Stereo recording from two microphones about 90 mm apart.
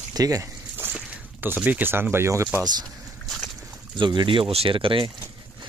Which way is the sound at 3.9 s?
60° right (ahead or behind).